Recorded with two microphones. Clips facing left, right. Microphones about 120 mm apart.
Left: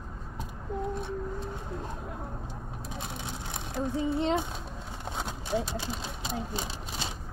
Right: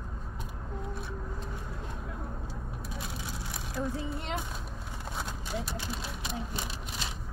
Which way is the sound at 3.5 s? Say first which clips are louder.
Left 2 dB; 25° left (ahead or behind).